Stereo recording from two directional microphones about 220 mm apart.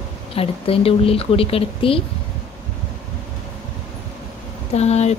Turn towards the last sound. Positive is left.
turn(degrees=30)  # may be behind; listen again after turning